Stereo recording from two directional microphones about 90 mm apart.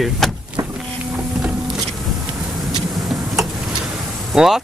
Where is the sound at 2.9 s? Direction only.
Centre (ahead or behind).